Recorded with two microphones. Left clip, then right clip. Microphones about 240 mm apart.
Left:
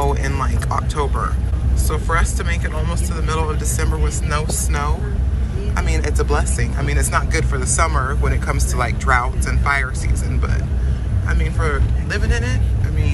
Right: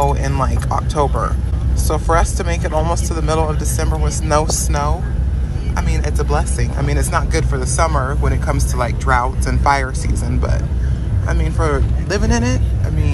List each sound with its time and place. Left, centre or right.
0.0 s speech: centre
11.2 s speech: centre